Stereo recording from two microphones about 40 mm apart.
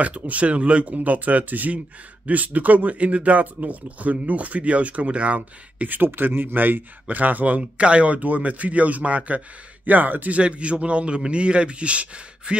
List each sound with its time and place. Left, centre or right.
0.0 s speech: right
9.8 s a man's voice: right
10.3 s a man's voice: right